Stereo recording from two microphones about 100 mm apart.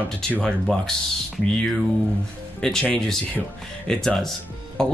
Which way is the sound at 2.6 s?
5° left (ahead or behind).